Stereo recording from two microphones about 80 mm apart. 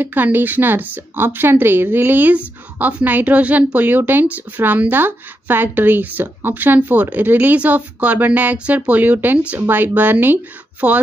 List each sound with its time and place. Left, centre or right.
0.0 s a woman's voice: right